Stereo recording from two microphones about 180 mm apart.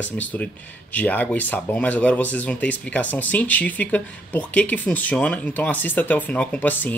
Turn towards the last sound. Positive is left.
turn(degrees=10)  # may be behind; listen again after turning